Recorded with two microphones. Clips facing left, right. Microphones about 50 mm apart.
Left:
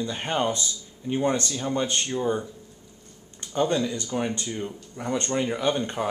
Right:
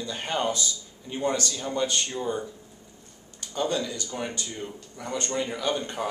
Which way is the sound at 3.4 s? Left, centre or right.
Left.